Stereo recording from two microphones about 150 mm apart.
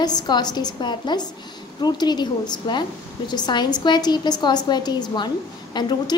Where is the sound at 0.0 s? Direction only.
30° left (ahead or behind).